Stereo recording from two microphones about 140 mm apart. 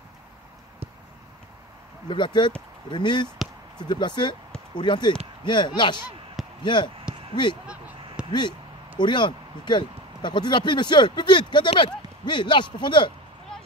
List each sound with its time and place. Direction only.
2.0 s speech: 35° left (ahead or behind)
7.6 s a sound: 5° right (ahead or behind)
8.3 s speech: 35° left (ahead or behind)